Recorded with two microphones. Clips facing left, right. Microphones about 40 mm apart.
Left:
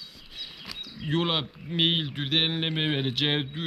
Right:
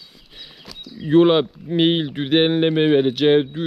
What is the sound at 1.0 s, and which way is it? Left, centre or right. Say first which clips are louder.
Speech: right 13 dB; centre.